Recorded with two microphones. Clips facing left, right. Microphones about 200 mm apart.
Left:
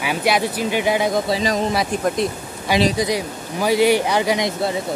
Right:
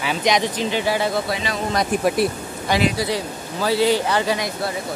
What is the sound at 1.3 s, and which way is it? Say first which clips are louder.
Speech: left 6 dB; 40° left (ahead or behind).